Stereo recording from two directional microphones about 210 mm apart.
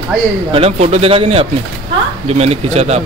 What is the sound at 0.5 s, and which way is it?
A woman's voice, 30° right (ahead or behind).